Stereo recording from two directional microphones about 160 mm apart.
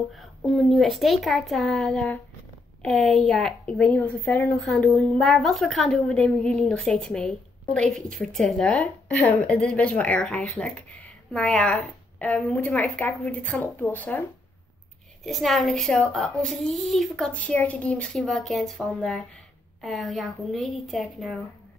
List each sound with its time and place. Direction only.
0.1 s a woman's voice: centre (ahead or behind); by 4.6 s 15° left (ahead or behind)
4.6 s a woman's voice: centre (ahead or behind)
15.2 s a woman's voice: centre (ahead or behind)